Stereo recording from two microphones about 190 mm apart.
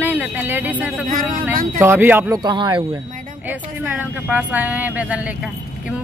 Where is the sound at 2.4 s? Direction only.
25° right (ahead or behind).